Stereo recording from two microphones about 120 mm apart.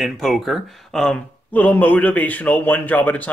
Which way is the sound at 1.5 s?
15° left (ahead or behind).